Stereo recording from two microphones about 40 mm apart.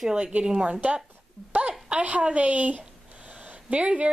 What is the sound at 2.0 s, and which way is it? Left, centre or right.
A woman's voice, right.